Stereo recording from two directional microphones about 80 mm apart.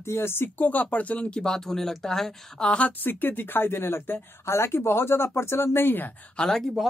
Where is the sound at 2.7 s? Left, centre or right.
Centre.